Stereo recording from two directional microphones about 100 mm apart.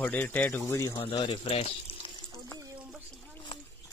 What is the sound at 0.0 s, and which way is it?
Speech, 15° left (ahead or behind).